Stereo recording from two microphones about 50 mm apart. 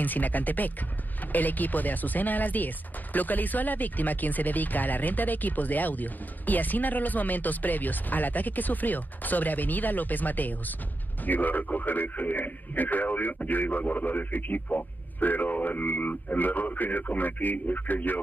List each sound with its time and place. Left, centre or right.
0.0 s speech: left